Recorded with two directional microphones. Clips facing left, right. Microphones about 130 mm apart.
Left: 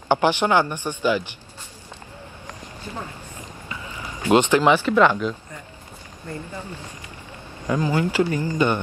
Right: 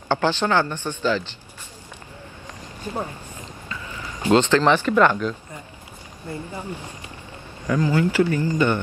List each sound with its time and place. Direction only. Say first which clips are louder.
0.1 s speech: left 2 dB; 15° left (ahead or behind)
2.9 s speech: right 5 dB; 35° right (ahead or behind)
3.6 s boat: even; 15° left (ahead or behind)
4.3 s speech: even; 15° left (ahead or behind)
6.2 s speech: right 2 dB; 10° right (ahead or behind)
7.6 s speech: right 1 dB; 15° left (ahead or behind)